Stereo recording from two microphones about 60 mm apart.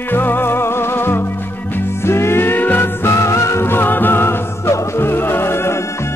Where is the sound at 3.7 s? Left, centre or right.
Left.